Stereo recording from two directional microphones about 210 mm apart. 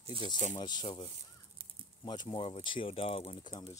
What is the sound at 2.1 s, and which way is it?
Speech, 25° left (ahead or behind).